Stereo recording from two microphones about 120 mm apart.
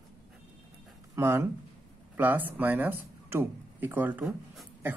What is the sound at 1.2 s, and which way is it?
A man's voice, 25° right (ahead or behind).